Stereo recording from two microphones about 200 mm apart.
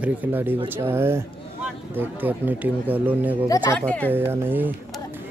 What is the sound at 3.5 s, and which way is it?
Speech, 15° left (ahead or behind).